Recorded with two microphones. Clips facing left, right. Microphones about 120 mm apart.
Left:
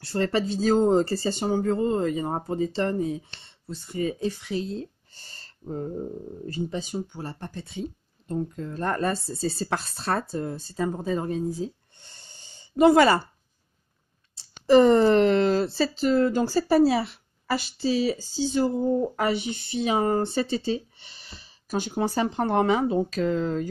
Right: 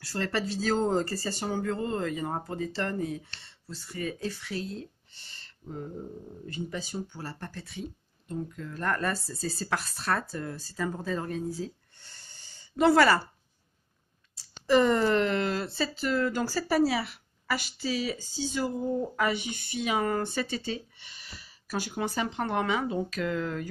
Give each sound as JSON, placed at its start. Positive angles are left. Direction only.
{"t": 0.0, "sound": "speech", "side_deg": 25}
{"t": 5.1, "sound": "a sound", "side_deg": 40}
{"t": 6.7, "sound": "speech", "side_deg": 20}
{"t": 8.3, "sound": "speech", "side_deg": 35}
{"t": 14.3, "sound": "speech", "side_deg": 35}
{"t": 21.9, "sound": "speech", "side_deg": 35}